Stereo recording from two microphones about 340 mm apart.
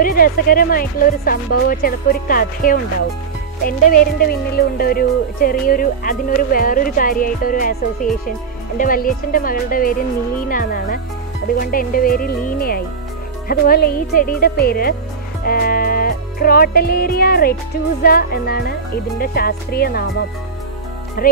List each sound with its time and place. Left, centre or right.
0.0 s speech: left
15.4 s music: left
18.0 s speech: left